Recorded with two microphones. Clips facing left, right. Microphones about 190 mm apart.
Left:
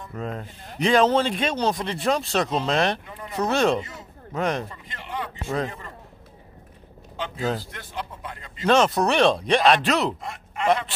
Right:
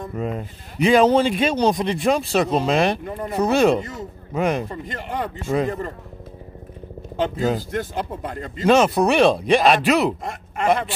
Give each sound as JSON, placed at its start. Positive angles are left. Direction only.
{"t": 0.1, "sound": "a man's voice", "side_deg": -10}
{"t": 3.1, "sound": "speech", "side_deg": -45}
{"t": 3.3, "sound": "a man's voice", "side_deg": -10}
{"t": 4.6, "sound": "speech", "side_deg": -45}
{"t": 7.2, "sound": "speech", "side_deg": -45}
{"t": 8.6, "sound": "a man's voice", "side_deg": -10}
{"t": 10.2, "sound": "speech", "side_deg": -45}